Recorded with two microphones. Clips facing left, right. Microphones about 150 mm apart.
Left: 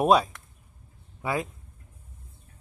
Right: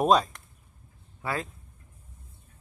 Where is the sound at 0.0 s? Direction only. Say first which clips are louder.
Left 1 dB; 10° left (ahead or behind).